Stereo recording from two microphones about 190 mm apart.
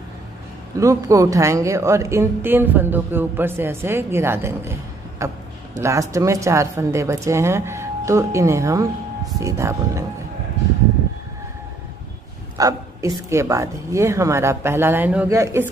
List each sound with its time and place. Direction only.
0.7 s a woman's voice: 15° right (ahead or behind)
12.5 s a woman's voice: 20° right (ahead or behind)